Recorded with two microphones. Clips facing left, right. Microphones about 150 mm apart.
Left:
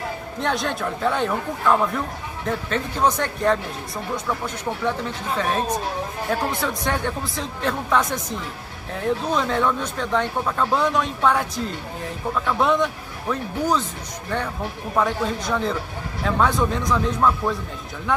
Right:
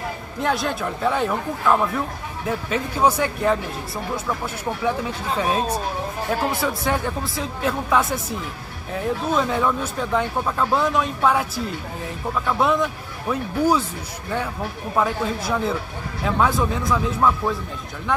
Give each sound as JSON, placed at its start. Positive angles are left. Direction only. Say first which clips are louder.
{"t": 0.4, "sound": "speech", "louder": "right 1 dB", "side_deg": -5}
{"t": 5.4, "sound": "speech", "louder": "right 1 dB", "side_deg": -10}
{"t": 15.0, "sound": "speech", "louder": "even", "side_deg": -5}